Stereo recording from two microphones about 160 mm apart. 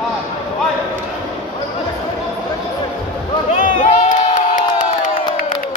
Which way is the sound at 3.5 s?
50° left (ahead or behind).